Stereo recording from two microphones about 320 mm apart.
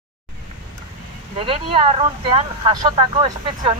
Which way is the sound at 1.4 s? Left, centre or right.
Centre.